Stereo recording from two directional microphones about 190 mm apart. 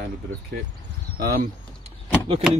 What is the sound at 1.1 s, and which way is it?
Speech, 55° right (ahead or behind).